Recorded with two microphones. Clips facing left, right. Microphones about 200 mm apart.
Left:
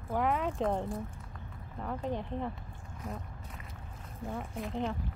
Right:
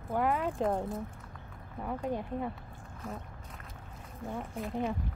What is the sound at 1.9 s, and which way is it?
Speech, 10° right (ahead or behind).